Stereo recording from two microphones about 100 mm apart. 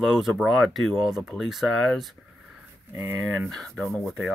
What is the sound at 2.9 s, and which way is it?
Speech, 20° right (ahead or behind).